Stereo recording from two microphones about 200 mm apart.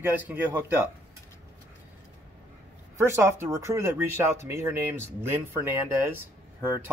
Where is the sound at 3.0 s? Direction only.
15° right (ahead or behind).